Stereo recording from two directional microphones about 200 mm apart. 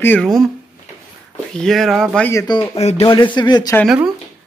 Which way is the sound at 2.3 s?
15° left (ahead or behind).